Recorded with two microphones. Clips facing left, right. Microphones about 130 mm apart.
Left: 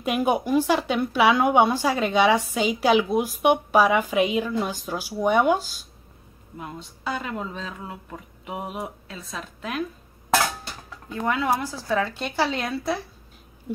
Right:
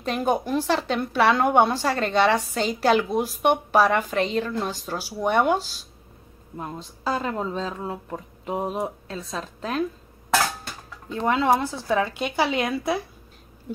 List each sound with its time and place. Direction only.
0.0 s a woman's voice: 10° left (ahead or behind)
6.5 s speech: 35° right (ahead or behind)
11.1 s a woman's voice: 25° right (ahead or behind)
12.2 s a woman's voice: 10° right (ahead or behind)